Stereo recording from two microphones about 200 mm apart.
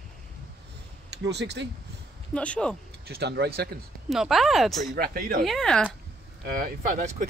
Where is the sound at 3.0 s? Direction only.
55° right (ahead or behind).